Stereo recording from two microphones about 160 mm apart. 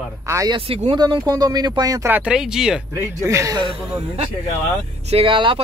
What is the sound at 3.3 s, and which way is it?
Speech, 20° right (ahead or behind).